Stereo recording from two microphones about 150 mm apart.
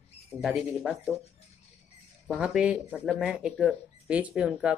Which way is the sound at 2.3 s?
5° right (ahead or behind).